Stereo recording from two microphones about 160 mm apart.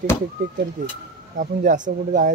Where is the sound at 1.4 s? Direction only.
55° right (ahead or behind).